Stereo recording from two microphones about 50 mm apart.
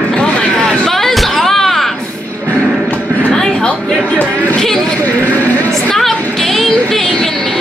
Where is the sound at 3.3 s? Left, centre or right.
Centre.